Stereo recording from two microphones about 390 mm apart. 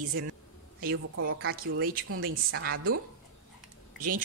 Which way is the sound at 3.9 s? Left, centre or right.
Right.